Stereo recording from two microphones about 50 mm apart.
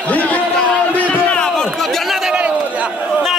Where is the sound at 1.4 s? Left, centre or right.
Centre.